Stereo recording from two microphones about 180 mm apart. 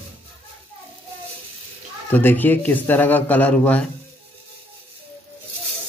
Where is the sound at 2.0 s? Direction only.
10° left (ahead or behind).